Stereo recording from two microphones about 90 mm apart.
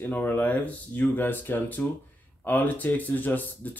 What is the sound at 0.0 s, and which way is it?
Speech, 20° left (ahead or behind).